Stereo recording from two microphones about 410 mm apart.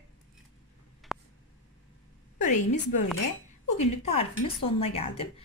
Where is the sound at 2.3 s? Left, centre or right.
Centre.